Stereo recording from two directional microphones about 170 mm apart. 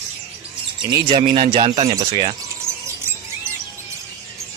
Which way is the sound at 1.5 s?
30° right (ahead or behind).